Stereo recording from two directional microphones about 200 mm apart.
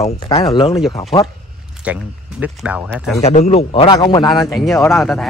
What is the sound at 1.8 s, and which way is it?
Speech, 5° right (ahead or behind).